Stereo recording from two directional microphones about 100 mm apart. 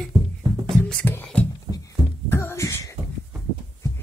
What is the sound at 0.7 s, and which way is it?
Music, 10° left (ahead or behind).